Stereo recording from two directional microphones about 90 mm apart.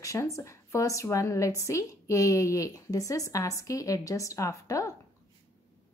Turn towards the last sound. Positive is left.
turn(degrees=35)  # may be behind; listen again after turning